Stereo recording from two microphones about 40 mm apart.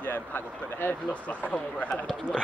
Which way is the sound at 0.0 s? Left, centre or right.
Left.